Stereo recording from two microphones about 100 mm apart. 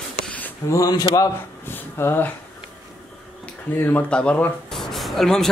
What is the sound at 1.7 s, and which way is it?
Speech, 20° left (ahead or behind).